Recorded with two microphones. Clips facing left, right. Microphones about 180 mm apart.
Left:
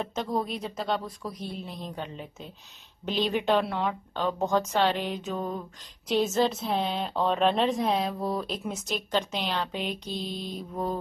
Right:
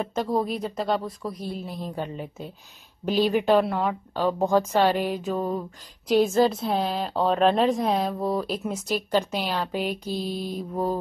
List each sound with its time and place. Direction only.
0.0 s a woman's voice: centre (ahead or behind)
2.0 s speech: 50° right (ahead or behind)
3.1 s a woman's voice: 5° right (ahead or behind)